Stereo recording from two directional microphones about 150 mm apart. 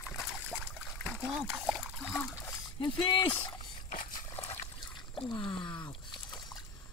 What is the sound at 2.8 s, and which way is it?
Speech, 35° left (ahead or behind).